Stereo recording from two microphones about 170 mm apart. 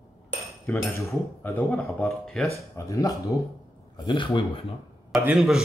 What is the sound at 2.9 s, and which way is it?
Speech, 20° left (ahead or behind).